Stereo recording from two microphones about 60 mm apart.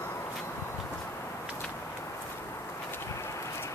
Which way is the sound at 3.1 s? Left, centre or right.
Left.